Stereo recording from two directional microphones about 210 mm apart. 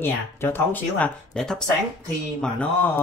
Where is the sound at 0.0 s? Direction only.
10° left (ahead or behind).